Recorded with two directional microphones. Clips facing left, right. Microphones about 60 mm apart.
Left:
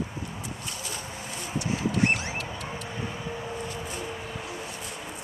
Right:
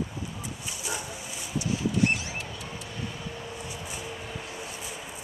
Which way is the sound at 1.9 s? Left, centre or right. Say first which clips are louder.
Left 1 dB; left.